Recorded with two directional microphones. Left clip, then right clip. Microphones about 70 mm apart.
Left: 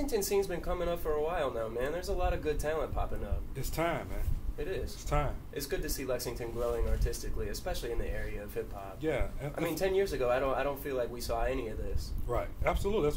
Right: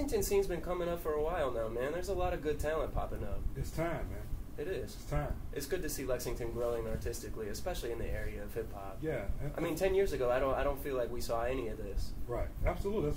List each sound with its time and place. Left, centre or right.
0.0 s speech: left